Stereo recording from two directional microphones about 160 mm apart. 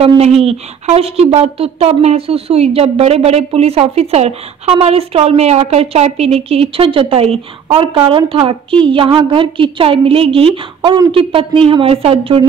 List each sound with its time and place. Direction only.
0.0 s speech: 40° right (ahead or behind)